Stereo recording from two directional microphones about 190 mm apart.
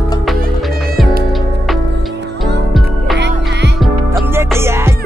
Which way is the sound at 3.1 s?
65° right (ahead or behind).